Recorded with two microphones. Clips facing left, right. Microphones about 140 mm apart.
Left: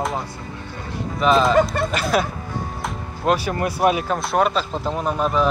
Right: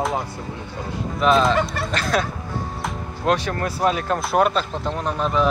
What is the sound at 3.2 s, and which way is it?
Speech, 5° left (ahead or behind).